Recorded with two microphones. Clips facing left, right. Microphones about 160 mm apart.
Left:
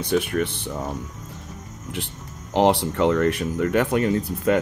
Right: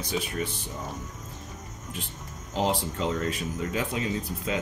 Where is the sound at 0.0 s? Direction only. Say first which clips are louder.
Left 8 dB; 60° left (ahead or behind).